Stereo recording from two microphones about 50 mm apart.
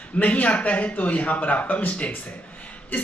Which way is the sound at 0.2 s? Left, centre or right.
Left.